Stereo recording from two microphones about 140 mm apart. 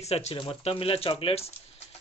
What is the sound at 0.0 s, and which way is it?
Speech, 50° left (ahead or behind).